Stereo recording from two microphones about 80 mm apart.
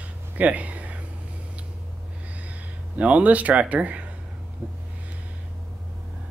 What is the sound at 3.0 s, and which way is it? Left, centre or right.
Speech, centre.